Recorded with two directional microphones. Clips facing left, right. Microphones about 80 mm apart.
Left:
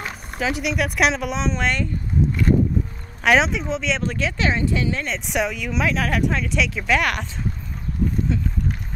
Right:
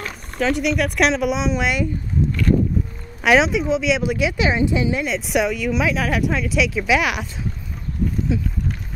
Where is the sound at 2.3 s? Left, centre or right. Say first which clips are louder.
Right 1 dB; left.